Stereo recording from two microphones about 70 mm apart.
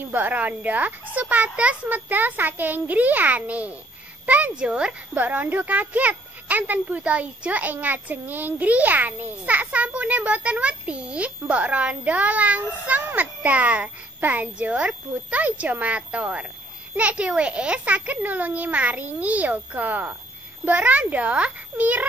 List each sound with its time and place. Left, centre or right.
0.0 s speech: right